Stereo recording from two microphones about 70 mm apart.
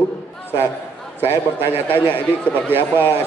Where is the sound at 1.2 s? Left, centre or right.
Right.